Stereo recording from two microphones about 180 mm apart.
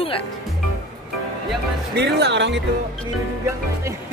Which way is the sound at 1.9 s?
70° right (ahead or behind).